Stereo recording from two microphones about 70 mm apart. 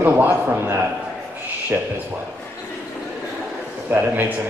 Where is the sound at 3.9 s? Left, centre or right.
Right.